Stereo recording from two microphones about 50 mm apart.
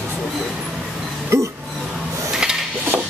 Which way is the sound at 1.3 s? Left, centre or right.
Right.